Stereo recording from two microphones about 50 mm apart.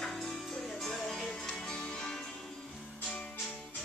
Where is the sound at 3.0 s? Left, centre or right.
Centre.